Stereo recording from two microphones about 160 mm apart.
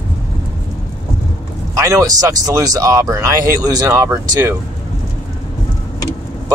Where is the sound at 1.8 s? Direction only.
20° right (ahead or behind).